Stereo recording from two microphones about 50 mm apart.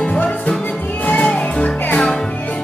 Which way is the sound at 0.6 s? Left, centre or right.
Left.